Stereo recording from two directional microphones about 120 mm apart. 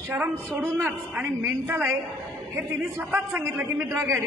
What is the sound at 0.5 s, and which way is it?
A woman's voice, 20° right (ahead or behind).